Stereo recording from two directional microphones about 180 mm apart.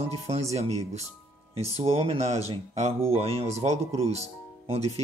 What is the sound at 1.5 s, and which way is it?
Speech, 35° right (ahead or behind).